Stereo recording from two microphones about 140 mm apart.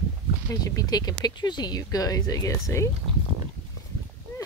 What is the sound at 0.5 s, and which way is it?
Speech, 25° left (ahead or behind).